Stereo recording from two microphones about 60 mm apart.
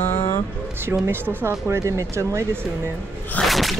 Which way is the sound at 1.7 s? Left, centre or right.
Right.